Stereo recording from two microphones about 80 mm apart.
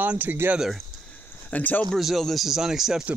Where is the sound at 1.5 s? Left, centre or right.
Centre.